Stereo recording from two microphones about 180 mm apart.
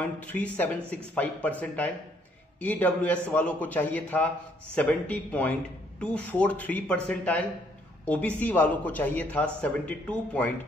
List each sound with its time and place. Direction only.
0.0 s speech: 10° left (ahead or behind)